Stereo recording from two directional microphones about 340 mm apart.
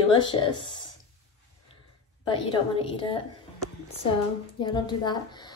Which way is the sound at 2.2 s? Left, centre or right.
Centre.